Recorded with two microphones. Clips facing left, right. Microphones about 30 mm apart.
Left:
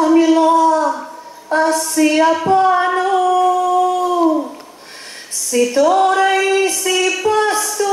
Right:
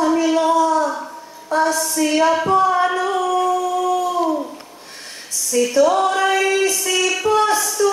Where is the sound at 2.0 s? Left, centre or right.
Centre.